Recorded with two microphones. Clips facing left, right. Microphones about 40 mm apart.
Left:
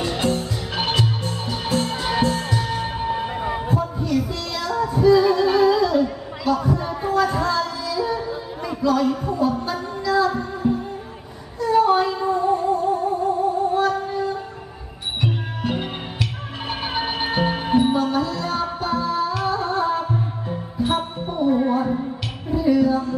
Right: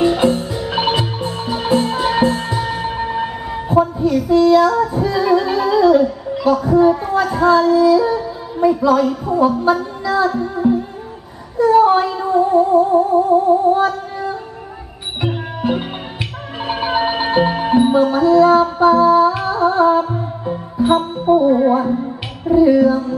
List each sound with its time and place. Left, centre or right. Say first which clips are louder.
0.0 s music: right 8 dB; centre
3.3 s a sound: even; centre
4.0 s music: right 11 dB; centre
6.4 s speech: right 9 dB; centre
7.0 s music: right 4 dB; centre
9.0 s speech: right 4 dB; centre
9.7 s child singing: right 12 dB; centre
10.0 s music: right 3 dB; centre
11.5 s a sound: right 6 dB; centre
12.1 s music: right 5 dB; centre
13.7 s female singing: right 3 dB; centre
15.1 s music: right 4 dB; centre